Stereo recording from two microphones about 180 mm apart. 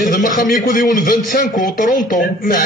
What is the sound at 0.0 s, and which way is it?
A man's voice, 45° left (ahead or behind).